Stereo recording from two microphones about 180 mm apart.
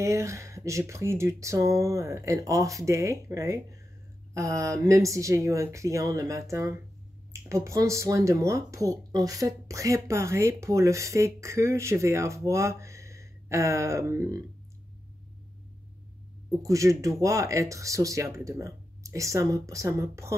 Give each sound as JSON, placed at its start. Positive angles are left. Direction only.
{"t": 0.0, "sound": "speech", "side_deg": -15}
{"t": 16.4, "sound": "speech", "side_deg": -15}